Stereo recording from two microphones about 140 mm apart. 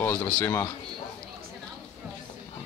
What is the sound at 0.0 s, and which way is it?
Speech, 15° left (ahead or behind).